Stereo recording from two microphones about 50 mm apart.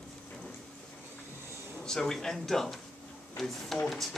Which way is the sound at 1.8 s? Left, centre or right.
Centre.